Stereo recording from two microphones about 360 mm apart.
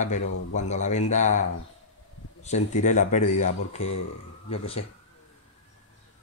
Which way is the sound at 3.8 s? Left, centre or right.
Left.